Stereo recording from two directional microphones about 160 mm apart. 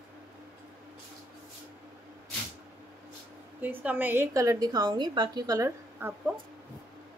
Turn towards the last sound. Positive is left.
turn(degrees=-15)  # may be behind; listen again after turning